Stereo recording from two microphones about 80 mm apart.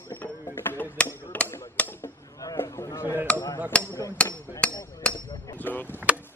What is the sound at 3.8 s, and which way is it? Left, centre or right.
Hammer, left.